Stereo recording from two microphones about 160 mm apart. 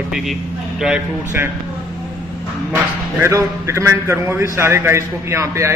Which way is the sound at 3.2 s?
15° right (ahead or behind).